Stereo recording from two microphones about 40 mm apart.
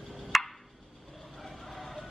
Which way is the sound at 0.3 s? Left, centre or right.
Centre.